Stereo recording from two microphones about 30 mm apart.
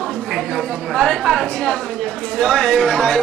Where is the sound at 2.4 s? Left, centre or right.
Left.